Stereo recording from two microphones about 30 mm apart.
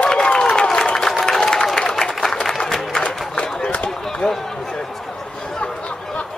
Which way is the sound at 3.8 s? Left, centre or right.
Left.